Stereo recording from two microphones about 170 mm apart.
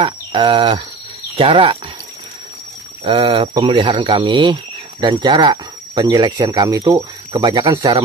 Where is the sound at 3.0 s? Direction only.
30° right (ahead or behind).